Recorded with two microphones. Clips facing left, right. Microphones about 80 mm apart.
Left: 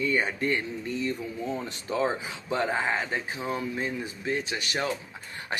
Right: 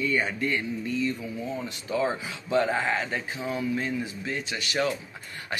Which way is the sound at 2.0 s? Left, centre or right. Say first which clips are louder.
Even; left.